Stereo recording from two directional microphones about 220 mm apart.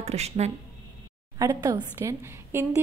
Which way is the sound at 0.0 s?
30° right (ahead or behind).